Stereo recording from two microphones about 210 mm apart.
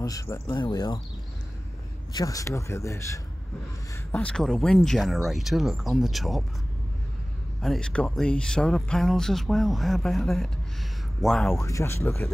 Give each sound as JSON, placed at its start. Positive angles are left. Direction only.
{"t": 0.0, "sound": "speech", "side_deg": 15}
{"t": 2.1, "sound": "speech", "side_deg": 15}
{"t": 7.6, "sound": "speech", "side_deg": 0}
{"t": 11.6, "sound": "speech", "side_deg": 15}